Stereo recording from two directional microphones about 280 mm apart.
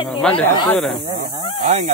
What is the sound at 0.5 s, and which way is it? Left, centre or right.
Speech, centre.